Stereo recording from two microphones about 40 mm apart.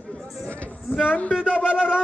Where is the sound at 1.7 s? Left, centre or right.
Right.